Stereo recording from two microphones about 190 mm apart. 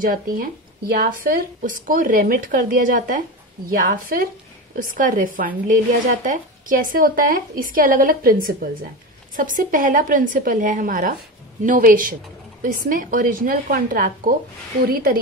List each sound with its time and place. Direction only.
0.0 s speech: 50° right (ahead or behind)